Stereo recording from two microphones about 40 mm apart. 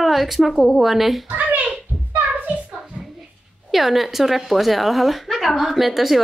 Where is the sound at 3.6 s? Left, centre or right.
Centre.